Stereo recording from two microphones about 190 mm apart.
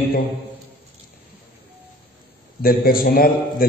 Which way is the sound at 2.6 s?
50° left (ahead or behind).